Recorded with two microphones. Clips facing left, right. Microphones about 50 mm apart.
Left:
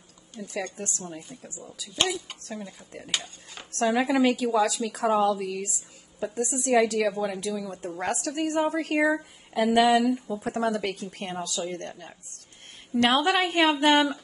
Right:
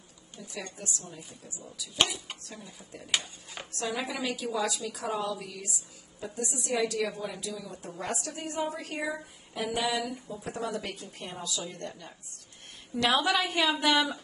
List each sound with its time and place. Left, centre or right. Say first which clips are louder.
0.4 s a woman's voice: left 8 dB; left
2.0 s a woman's voice: left 2 dB; centre
2.4 s a woman's voice: left 8 dB; left
3.1 s speech: right 1 dB; centre
3.7 s a woman's voice: left 10 dB; left
10.3 s a woman's voice: left 7 dB; left